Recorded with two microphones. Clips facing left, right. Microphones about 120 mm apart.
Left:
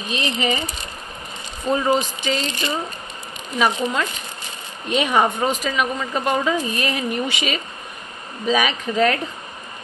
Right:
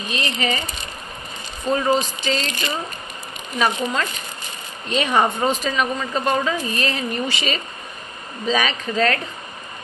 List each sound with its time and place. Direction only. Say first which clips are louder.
0.1 s speech: left 2 dB; 20° left (ahead or behind)
1.7 s speech: even; 15° left (ahead or behind)
5.1 s speech: right 1 dB; 5° left (ahead or behind)